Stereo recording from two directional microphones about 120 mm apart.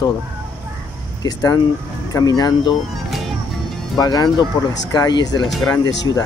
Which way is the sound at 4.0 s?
35° left (ahead or behind).